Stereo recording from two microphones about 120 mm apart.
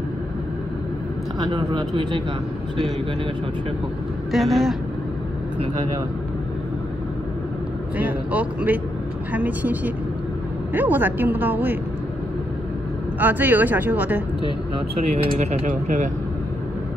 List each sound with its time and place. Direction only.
1.4 s a man's voice: 40° right (ahead or behind)
4.3 s speech: centre (ahead or behind)
8.0 s speech: 15° right (ahead or behind)
13.2 s speech: 15° right (ahead or behind)
15.0 s speech: 60° right (ahead or behind); by 16.1 s 90° right